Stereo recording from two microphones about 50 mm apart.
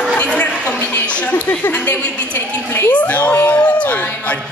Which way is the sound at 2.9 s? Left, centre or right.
Left.